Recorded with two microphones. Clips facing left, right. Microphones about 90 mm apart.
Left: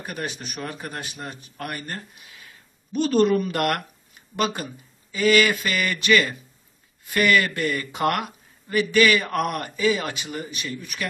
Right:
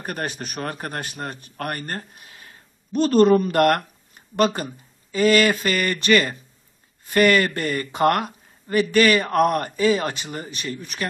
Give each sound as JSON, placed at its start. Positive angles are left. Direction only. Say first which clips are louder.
{"t": 0.0, "sound": "speech", "louder": "right 3 dB", "side_deg": -50}